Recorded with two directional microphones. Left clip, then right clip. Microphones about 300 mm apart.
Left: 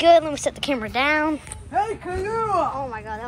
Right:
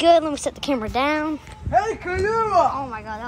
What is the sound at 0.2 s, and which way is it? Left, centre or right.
Speech, centre.